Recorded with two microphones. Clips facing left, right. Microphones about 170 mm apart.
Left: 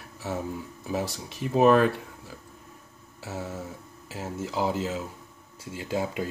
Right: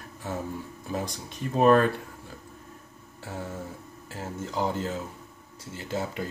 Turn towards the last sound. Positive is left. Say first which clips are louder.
# left 2 dB
turn(degrees=10)  # may be behind; listen again after turning